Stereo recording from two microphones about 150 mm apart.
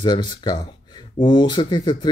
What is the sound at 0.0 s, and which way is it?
Speech, 30° left (ahead or behind).